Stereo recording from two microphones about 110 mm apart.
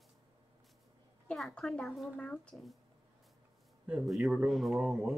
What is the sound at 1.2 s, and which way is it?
Speech, 5° left (ahead or behind).